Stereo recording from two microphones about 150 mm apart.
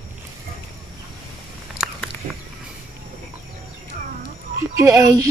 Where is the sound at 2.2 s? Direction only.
60° right (ahead or behind).